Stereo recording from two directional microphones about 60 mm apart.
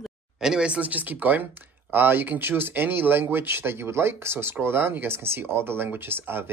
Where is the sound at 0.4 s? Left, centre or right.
Centre.